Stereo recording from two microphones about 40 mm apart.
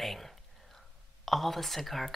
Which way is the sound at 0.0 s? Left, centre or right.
Centre.